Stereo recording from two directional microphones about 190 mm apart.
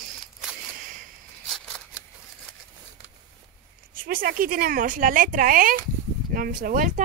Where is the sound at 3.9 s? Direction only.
45° right (ahead or behind).